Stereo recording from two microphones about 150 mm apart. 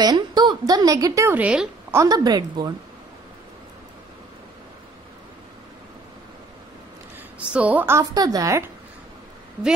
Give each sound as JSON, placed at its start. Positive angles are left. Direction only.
{"t": 0.0, "sound": "a woman's voice", "side_deg": -30}
{"t": 2.0, "sound": "a woman's voice", "side_deg": -25}
{"t": 7.3, "sound": "a woman's voice", "side_deg": -10}